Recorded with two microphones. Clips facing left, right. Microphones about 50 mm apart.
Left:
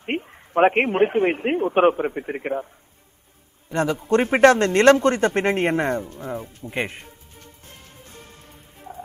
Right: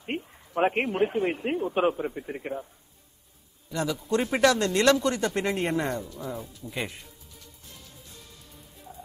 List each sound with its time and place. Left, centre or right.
0.0 s a man's voice: left